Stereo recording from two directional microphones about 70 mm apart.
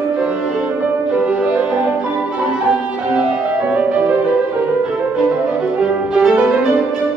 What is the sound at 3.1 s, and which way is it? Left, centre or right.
Music, centre.